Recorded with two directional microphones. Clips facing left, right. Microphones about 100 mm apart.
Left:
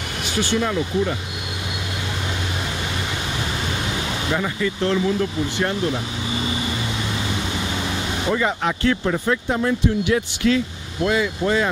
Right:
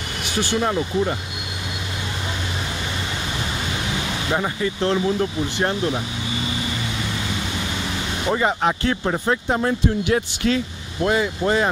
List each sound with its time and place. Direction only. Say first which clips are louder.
0.6 s speech: right 1 dB; 25° right (ahead or behind)
4.3 s speech: right 1 dB; 25° right (ahead or behind)
8.3 s speech: right 2 dB; 25° right (ahead or behind)
11.1 s speech: right 1 dB; 25° right (ahead or behind)